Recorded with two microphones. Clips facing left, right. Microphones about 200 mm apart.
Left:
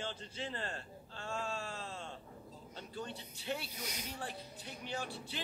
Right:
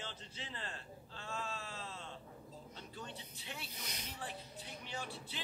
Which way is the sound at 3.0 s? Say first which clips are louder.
Left 7 dB; 40° left (ahead or behind).